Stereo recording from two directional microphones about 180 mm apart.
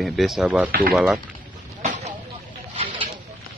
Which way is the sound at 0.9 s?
Centre (ahead or behind).